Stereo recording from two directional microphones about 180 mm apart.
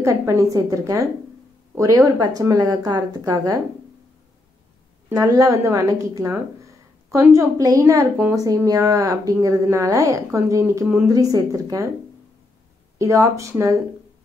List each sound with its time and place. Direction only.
0.0 s speech: 15° right (ahead or behind)
5.1 s speech: 20° right (ahead or behind)
13.0 s speech: 15° right (ahead or behind)